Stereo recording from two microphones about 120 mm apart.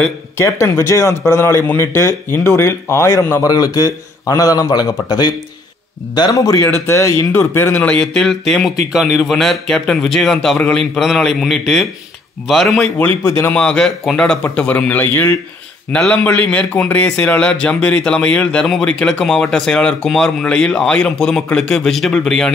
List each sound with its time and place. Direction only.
0.4 s a man's voice: 25° left (ahead or behind); by 12.9 s centre (ahead or behind)
13.0 s speech: 20° left (ahead or behind)
13.6 s a man's voice: 5° left (ahead or behind)